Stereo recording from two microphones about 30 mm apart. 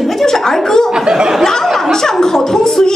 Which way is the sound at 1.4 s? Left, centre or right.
Centre.